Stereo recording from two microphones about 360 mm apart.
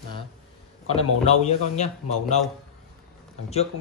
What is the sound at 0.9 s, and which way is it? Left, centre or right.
Speech, centre.